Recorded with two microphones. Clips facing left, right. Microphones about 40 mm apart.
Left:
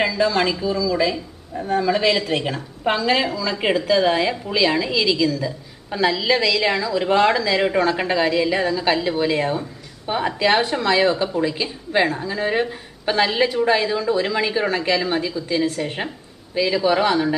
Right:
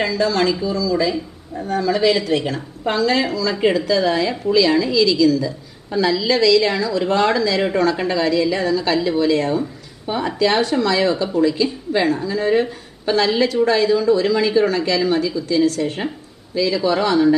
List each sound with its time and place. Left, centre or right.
0.0 s a woman's voice: centre